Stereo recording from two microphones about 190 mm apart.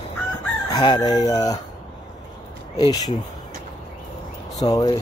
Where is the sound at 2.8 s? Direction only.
20° left (ahead or behind).